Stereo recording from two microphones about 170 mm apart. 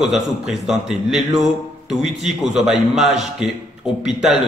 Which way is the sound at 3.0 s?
40° right (ahead or behind).